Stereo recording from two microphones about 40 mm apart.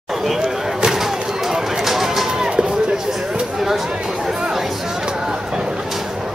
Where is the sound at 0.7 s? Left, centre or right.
Centre.